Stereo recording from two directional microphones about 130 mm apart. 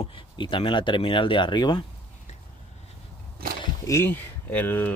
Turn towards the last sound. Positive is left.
turn(degrees=15)  # may be behind; listen again after turning